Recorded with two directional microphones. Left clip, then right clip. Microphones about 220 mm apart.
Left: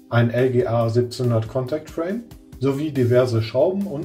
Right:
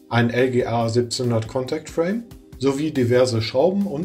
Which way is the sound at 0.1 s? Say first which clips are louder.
Even; 35° right (ahead or behind).